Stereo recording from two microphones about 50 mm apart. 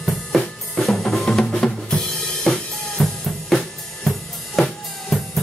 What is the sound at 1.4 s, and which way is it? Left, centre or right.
Drum kit, centre.